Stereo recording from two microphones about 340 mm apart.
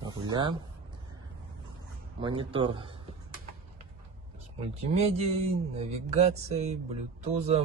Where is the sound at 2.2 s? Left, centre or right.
Centre.